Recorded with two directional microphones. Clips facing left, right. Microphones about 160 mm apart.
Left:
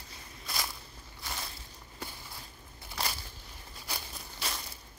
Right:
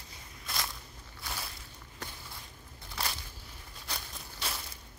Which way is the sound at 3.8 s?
5° left (ahead or behind).